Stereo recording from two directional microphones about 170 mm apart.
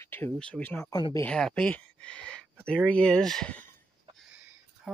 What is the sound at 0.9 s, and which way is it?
Speech, 25° left (ahead or behind).